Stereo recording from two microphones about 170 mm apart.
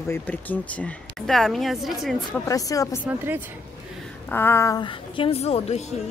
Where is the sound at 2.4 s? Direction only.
20° left (ahead or behind).